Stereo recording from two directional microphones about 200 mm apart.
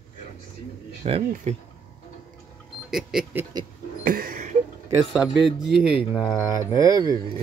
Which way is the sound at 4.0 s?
45° right (ahead or behind).